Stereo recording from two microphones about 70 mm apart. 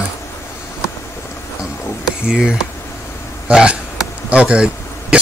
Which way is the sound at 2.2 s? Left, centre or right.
Centre.